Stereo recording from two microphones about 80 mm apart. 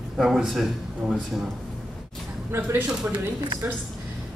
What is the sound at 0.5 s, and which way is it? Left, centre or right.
Speech, centre.